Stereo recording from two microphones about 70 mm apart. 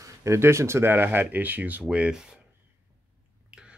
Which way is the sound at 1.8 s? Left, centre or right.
Centre.